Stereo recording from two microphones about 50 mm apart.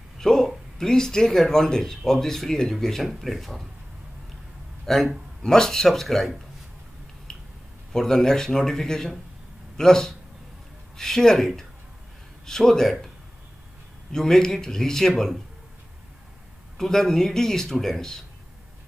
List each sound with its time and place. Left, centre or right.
0.2 s speech: centre
4.8 s a man's voice: centre
7.3 s finger snapping: centre
7.9 s speech: centre
14.1 s speech: centre
16.7 s speech: centre